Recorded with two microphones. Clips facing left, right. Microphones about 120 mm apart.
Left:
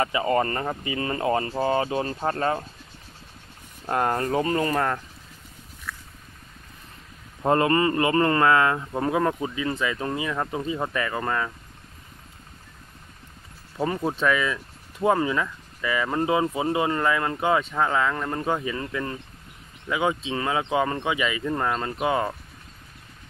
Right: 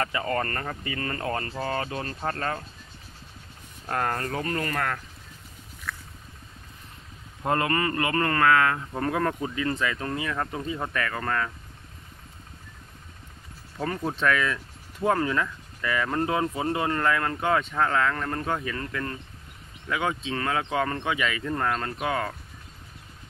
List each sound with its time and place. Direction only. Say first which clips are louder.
0.0 s speech: left 5 dB; 15° left (ahead or behind)
3.8 s speech: left 4 dB; 20° left (ahead or behind)
7.4 s speech: left 5 dB; 25° left (ahead or behind)
13.7 s speech: left 3 dB; 15° left (ahead or behind)